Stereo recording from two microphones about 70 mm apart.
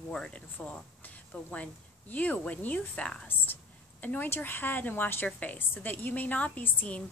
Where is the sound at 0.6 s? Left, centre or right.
Left.